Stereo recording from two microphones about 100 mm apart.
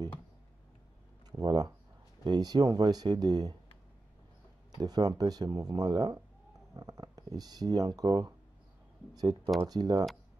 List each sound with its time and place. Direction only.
1.4 s speech: 40° right (ahead or behind)
4.7 s speech: 40° right (ahead or behind)